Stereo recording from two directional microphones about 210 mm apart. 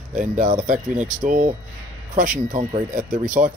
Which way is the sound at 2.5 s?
35° right (ahead or behind).